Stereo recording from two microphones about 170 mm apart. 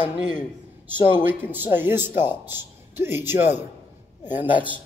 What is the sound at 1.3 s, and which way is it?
Speech, 10° right (ahead or behind).